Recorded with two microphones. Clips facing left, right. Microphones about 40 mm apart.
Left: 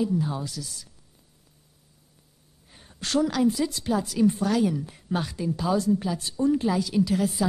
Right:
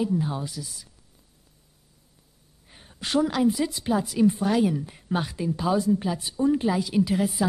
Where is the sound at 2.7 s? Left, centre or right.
Centre.